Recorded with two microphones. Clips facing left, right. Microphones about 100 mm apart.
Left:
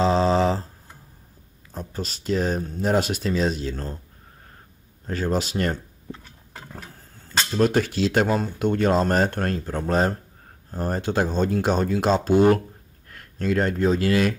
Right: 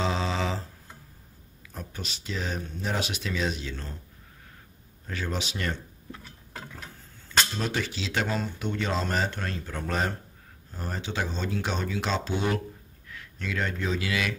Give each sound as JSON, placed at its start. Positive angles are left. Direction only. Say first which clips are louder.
{"t": 0.0, "sound": "a sound", "louder": "left 9 dB", "side_deg": 35}
{"t": 1.7, "sound": "speech", "louder": "left 7 dB", "side_deg": 35}
{"t": 5.0, "sound": "speech", "louder": "left 8 dB", "side_deg": 40}
{"t": 6.7, "sound": "a sound", "louder": "left 3 dB", "side_deg": 40}
{"t": 7.5, "sound": "speech", "louder": "left 10 dB", "side_deg": 45}
{"t": 9.7, "sound": "speech", "louder": "left 6 dB", "side_deg": 35}